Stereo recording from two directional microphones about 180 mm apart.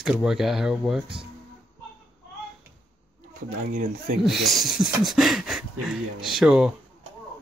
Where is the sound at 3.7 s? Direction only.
45° right (ahead or behind).